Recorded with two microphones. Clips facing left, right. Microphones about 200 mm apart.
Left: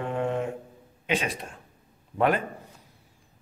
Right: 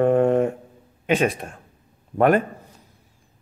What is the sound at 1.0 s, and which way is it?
A man's voice, 50° right (ahead or behind).